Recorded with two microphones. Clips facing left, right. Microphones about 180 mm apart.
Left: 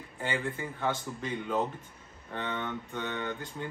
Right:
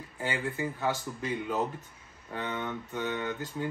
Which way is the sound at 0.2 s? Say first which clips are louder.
Right 1 dB; 5° right (ahead or behind).